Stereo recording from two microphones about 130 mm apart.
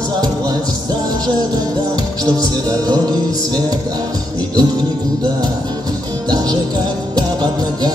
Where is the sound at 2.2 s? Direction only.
30° right (ahead or behind).